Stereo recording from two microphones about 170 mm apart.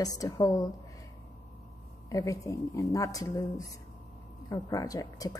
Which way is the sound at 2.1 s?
20° left (ahead or behind).